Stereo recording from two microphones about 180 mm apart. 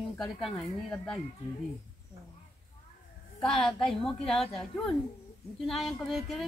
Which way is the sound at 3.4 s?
5° left (ahead or behind).